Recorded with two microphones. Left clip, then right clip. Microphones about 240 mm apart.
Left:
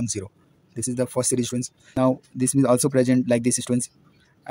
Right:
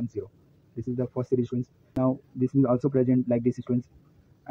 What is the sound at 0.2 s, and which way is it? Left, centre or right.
Speech, left.